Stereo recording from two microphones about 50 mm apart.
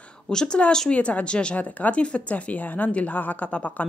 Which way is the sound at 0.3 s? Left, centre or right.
Centre.